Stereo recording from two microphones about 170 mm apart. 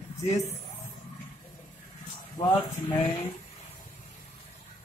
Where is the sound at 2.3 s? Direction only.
25° left (ahead or behind).